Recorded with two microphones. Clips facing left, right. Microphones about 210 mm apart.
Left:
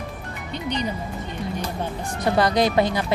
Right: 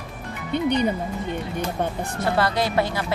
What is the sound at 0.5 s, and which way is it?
Speech, 55° right (ahead or behind).